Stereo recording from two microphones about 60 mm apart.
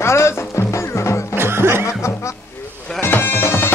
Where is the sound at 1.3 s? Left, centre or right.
Right.